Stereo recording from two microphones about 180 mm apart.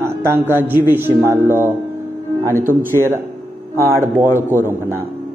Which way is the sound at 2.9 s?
15° right (ahead or behind).